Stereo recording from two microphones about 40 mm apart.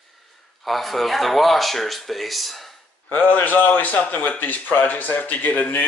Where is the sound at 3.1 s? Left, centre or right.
Left.